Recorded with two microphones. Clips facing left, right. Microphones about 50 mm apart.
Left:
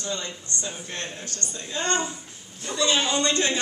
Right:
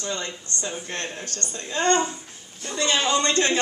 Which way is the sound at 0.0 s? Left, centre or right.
Right.